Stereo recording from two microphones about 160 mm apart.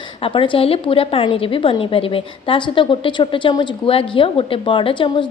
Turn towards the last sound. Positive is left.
turn(degrees=30)  # may be behind; listen again after turning